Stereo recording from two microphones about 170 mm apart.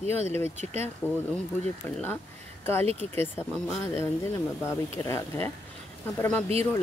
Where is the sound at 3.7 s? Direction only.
15° left (ahead or behind).